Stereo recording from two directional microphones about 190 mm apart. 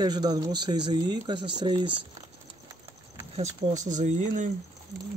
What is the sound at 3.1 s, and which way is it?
Speech, 35° right (ahead or behind).